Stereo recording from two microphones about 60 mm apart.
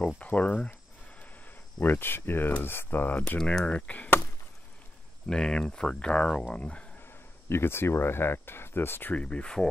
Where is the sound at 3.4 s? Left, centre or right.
Centre.